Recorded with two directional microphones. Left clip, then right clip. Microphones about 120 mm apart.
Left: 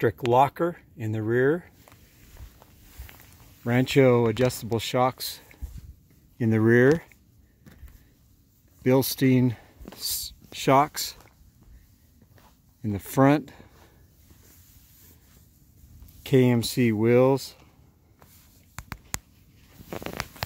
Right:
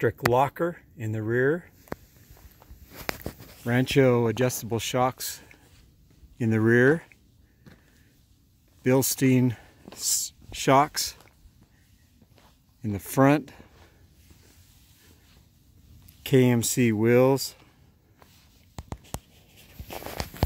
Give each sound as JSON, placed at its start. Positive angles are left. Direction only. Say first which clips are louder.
{"t": 0.0, "sound": "speech", "louder": "left 2 dB", "side_deg": 20}
{"t": 3.6, "sound": "speech", "louder": "left 1 dB", "side_deg": 10}
{"t": 8.8, "sound": "speech", "louder": "left 1 dB", "side_deg": 10}
{"t": 12.4, "sound": "a sound", "louder": "left 1 dB", "side_deg": 5}
{"t": 16.2, "sound": "speech", "louder": "even", "side_deg": 0}